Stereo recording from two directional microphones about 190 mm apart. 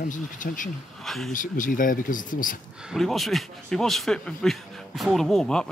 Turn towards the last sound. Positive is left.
turn(degrees=5)  # may be behind; listen again after turning